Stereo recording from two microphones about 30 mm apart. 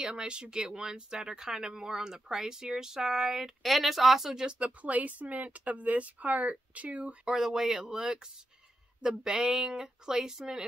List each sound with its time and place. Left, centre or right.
0.1 s speech: right; by 3.5 s centre
3.6 s speech: centre
4.5 s speech: right
4.8 s speech: right
7.2 s speech: centre